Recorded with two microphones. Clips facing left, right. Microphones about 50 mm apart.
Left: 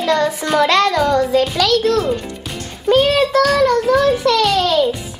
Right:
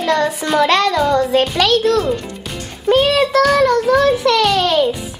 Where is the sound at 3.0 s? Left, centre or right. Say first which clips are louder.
Right 1 dB; right.